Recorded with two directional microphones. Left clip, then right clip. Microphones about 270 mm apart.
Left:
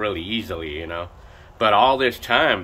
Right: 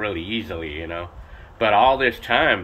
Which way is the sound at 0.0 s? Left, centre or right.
Centre.